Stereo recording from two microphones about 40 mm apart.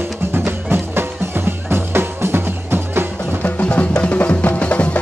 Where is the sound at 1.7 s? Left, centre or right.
Right.